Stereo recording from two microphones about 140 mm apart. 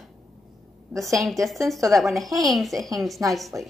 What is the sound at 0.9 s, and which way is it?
Speech, 10° right (ahead or behind).